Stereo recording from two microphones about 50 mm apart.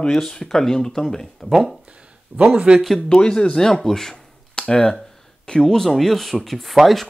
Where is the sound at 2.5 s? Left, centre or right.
Centre.